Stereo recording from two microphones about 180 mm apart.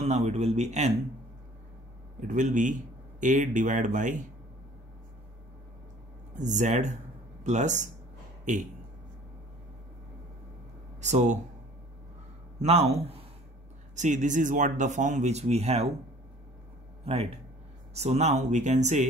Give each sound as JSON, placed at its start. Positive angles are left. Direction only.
{"t": 0.0, "sound": "speech", "side_deg": -40}
{"t": 2.1, "sound": "speech", "side_deg": -45}
{"t": 6.3, "sound": "speech", "side_deg": -45}
{"t": 11.0, "sound": "speech", "side_deg": -40}
{"t": 12.5, "sound": "speech", "side_deg": -35}
{"t": 17.0, "sound": "speech", "side_deg": -35}